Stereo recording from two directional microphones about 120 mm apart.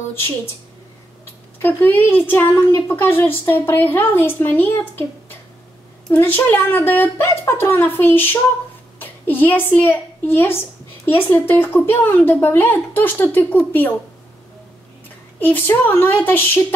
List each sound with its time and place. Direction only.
1.6 s a child's voice: 15° left (ahead or behind)
15.4 s a child's voice: 15° left (ahead or behind)